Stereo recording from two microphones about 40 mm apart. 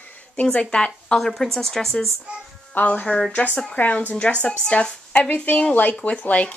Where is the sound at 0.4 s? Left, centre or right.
Left.